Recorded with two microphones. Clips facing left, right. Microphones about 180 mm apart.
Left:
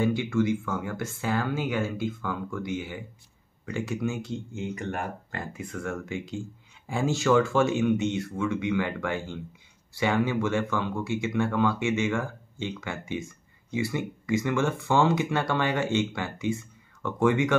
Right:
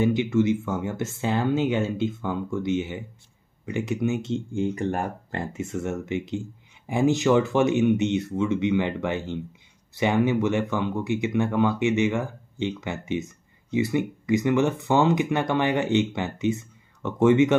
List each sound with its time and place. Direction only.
0.0 s speech: 20° right (ahead or behind)